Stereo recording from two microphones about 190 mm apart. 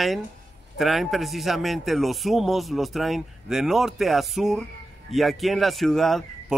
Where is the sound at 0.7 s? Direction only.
Centre (ahead or behind).